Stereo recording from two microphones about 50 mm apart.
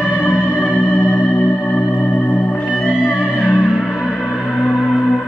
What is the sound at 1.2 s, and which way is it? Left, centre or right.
Organ, left.